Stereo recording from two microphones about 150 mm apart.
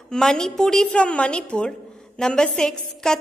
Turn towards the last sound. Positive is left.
turn(degrees=5)  # may be behind; listen again after turning